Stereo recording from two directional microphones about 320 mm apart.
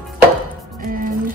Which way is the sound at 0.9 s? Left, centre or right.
Right.